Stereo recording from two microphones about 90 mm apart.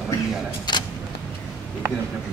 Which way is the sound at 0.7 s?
55° left (ahead or behind).